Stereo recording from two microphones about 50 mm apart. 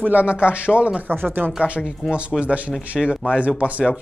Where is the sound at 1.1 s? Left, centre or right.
Right.